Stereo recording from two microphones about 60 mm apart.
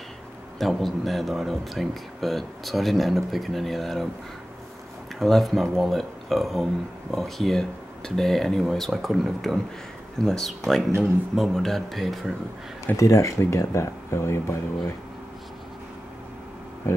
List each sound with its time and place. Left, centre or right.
0.6 s speech: centre
5.2 s speech: centre
12.9 s speech: left